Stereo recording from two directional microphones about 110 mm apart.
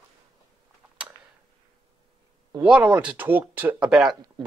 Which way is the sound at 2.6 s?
10° right (ahead or behind).